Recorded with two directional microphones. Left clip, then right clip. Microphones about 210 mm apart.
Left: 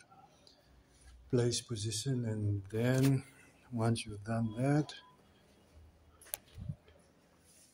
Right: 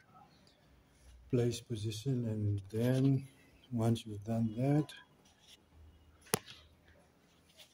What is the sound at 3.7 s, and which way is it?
Speech, 25° right (ahead or behind).